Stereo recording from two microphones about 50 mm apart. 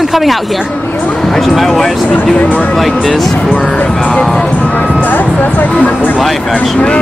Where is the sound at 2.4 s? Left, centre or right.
Left.